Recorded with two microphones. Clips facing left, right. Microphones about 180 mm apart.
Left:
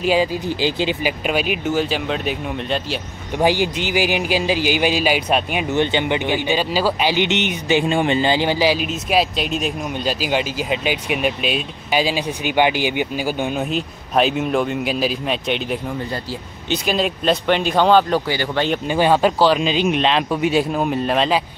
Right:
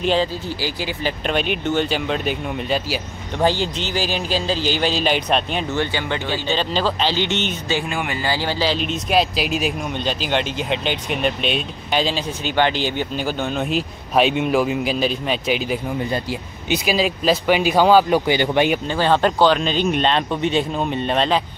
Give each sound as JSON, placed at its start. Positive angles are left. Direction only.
{"t": 0.0, "sound": "a man's voice", "side_deg": 10}
{"t": 1.2, "sound": "speech", "side_deg": 5}
{"t": 3.3, "sound": "a man's voice", "side_deg": 15}
{"t": 18.2, "sound": "speech", "side_deg": -20}
{"t": 18.9, "sound": "speech", "side_deg": 10}